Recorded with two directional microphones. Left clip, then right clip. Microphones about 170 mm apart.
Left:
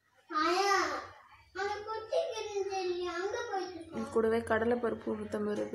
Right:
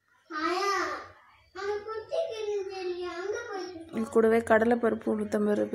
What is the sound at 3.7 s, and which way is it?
Speech, 30° right (ahead or behind).